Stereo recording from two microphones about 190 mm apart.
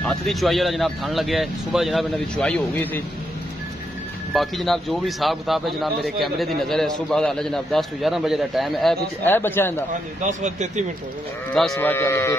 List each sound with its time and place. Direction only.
0.0 s speech: centre (ahead or behind)
4.3 s speech: centre (ahead or behind)
9.2 s speech: 10° left (ahead or behind)
10.2 s speech: 40° right (ahead or behind)
11.7 s speech: 10° left (ahead or behind)